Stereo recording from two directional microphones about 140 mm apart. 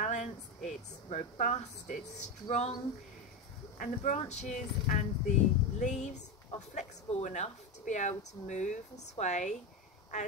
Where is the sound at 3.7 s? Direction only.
65° left (ahead or behind).